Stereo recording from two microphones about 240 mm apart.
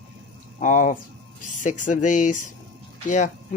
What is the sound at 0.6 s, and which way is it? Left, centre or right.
Speech, left.